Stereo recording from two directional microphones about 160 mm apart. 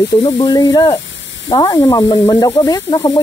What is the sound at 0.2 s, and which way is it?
Speech, 25° left (ahead or behind).